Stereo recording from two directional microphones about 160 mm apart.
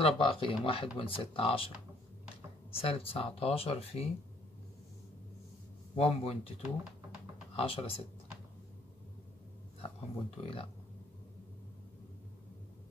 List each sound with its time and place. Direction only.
0.0 s speech: 35° left (ahead or behind)
2.8 s speech: 35° left (ahead or behind)
5.9 s speech: 40° left (ahead or behind)
7.5 s speech: 35° left (ahead or behind)
9.8 s speech: 35° left (ahead or behind)